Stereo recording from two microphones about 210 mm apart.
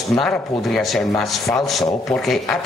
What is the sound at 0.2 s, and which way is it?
Speech, centre (ahead or behind).